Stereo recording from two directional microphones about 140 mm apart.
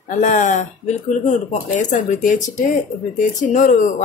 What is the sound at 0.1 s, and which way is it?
Speech, 60° left (ahead or behind).